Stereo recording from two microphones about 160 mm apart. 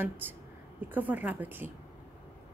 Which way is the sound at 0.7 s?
10° right (ahead or behind).